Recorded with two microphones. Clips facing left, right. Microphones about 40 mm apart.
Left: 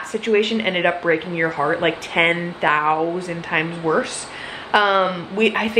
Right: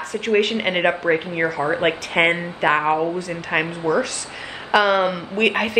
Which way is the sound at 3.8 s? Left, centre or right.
Left.